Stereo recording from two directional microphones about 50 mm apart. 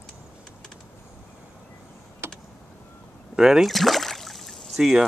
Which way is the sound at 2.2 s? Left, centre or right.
Right.